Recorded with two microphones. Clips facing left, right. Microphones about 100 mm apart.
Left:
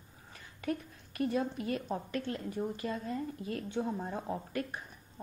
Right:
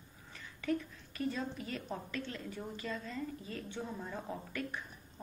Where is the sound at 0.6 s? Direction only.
50° left (ahead or behind).